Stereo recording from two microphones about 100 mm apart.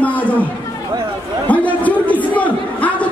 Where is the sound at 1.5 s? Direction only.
15° left (ahead or behind).